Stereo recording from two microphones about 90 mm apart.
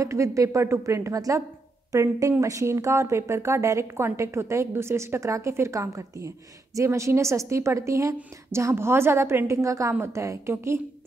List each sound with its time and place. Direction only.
0.0 s a woman's voice: 35° right (ahead or behind)